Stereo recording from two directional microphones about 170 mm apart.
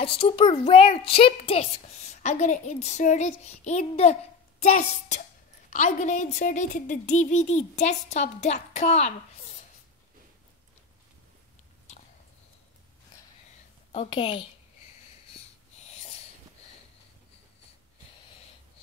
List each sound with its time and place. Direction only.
0.0 s a child's voice: 30° left (ahead or behind)
5.7 s a woman's voice: 45° left (ahead or behind)
13.9 s a woman's voice: 30° left (ahead or behind)